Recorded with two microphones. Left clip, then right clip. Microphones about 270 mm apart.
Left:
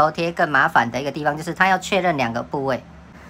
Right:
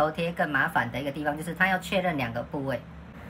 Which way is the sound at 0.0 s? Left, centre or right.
Centre.